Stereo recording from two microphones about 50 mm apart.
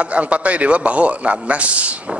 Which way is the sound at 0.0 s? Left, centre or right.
Right.